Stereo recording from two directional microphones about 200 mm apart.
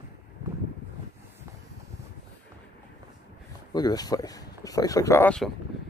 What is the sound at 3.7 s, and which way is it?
Speech, 20° left (ahead or behind).